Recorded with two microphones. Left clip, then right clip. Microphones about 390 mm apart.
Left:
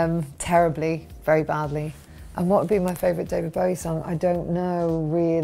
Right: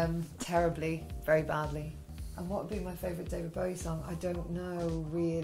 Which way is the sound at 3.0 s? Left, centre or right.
Left.